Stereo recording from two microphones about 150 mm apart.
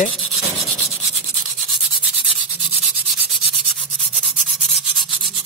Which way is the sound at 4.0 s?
Centre (ahead or behind).